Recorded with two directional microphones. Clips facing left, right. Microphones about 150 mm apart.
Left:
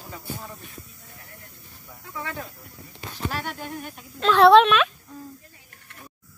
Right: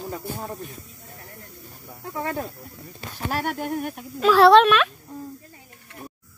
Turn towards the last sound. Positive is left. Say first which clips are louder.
# even
turn(degrees=0)  # may be behind; listen again after turning